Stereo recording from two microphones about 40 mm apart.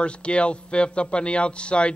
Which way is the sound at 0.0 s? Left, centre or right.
Left.